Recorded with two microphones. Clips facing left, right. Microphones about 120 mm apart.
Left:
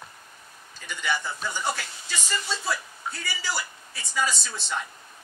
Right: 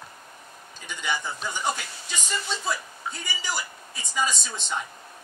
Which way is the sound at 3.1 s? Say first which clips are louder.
Left 1 dB; 15° right (ahead or behind).